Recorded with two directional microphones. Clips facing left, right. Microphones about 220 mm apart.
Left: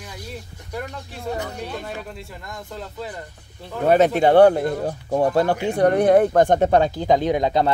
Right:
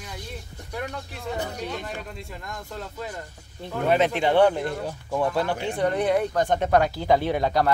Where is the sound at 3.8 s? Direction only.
40° left (ahead or behind).